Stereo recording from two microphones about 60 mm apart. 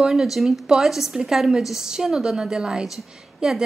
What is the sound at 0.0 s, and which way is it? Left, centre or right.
A woman's voice, centre.